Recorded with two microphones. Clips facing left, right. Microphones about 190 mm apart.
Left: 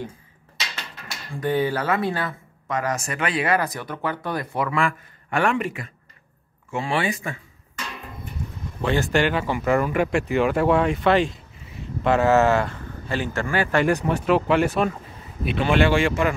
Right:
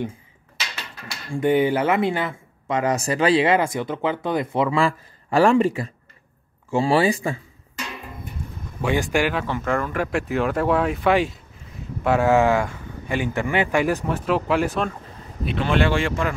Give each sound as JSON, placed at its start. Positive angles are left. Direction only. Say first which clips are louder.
{"t": 1.4, "sound": "speech", "louder": "right 4 dB", "side_deg": -20}
{"t": 8.8, "sound": "speech", "louder": "even", "side_deg": -10}
{"t": 9.4, "sound": "speech", "louder": "left 3 dB", "side_deg": 5}
{"t": 14.0, "sound": "speech", "louder": "left 2 dB", "side_deg": 0}